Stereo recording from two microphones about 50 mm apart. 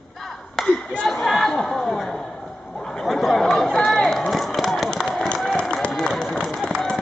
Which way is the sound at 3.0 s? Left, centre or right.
Centre.